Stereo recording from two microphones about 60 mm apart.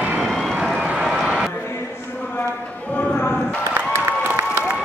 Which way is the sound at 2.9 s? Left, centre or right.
Left.